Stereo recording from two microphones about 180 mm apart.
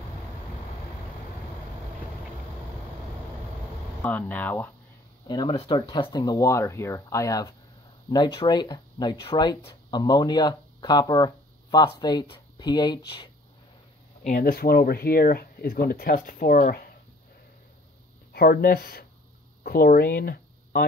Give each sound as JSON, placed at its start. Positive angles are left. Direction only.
{"t": 4.0, "sound": "speech", "side_deg": 10}
{"t": 5.3, "sound": "speech", "side_deg": 25}
{"t": 14.2, "sound": "speech", "side_deg": 50}
{"t": 18.3, "sound": "speech", "side_deg": 60}